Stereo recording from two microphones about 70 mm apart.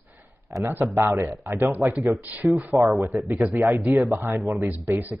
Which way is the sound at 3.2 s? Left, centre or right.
Right.